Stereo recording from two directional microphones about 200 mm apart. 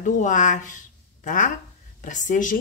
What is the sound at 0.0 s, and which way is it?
Speech, 40° left (ahead or behind).